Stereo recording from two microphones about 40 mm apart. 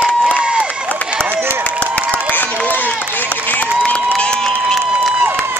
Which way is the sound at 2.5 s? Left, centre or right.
Left.